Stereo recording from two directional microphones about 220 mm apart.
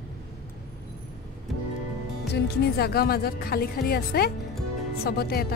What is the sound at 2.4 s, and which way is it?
A woman's voice, 45° left (ahead or behind).